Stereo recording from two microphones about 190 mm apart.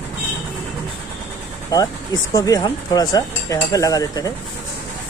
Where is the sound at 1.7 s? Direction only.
20° left (ahead or behind).